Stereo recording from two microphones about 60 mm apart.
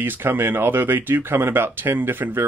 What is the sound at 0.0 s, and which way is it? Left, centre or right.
Speech, right.